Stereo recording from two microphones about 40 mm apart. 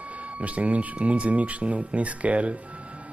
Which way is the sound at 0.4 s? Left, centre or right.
Right.